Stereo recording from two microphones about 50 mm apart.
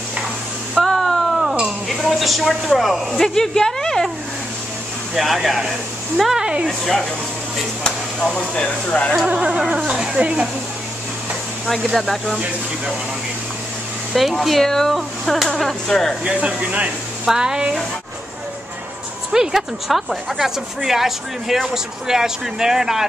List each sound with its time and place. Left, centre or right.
0.7 s a sound: centre
1.9 s speech: centre
5.1 s speech: centre
6.4 s a woman's voice: centre
6.8 s speech: centre
8.6 s speech: left
9.2 s speech: right
11.6 s speech: centre
14.1 s speech: centre
16.3 s speech: right
17.3 s a woman's voice: centre
19.3 s a woman's voice: centre